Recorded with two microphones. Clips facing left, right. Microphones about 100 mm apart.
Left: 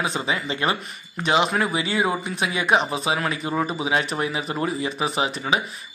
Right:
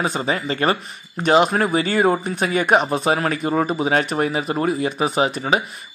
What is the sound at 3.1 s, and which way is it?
Speech, 45° right (ahead or behind).